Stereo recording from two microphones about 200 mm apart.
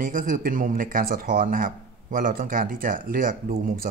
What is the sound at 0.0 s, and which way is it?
Speech, 45° right (ahead or behind).